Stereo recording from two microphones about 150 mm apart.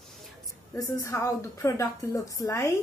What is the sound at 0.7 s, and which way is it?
A woman's voice, 20° left (ahead or behind).